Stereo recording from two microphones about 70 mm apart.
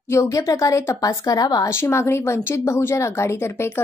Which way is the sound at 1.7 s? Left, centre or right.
Left.